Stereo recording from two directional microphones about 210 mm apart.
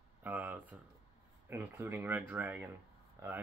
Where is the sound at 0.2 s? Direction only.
10° right (ahead or behind).